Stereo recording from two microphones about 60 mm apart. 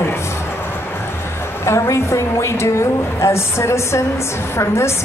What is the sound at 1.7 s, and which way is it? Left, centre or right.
A woman's voice, left.